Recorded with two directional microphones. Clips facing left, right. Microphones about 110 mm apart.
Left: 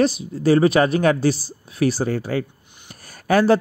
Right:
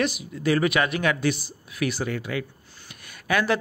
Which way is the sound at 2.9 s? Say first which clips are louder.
Left 7 dB; 35° left (ahead or behind).